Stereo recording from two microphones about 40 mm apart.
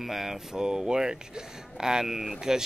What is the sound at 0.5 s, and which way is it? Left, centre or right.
Speech, centre.